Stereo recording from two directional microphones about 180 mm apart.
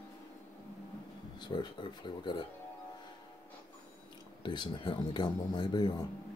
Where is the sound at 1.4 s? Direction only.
25° left (ahead or behind).